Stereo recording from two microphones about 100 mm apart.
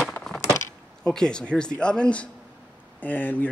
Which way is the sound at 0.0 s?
5° left (ahead or behind).